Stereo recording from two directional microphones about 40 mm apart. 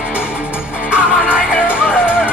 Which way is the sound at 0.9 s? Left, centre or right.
Right.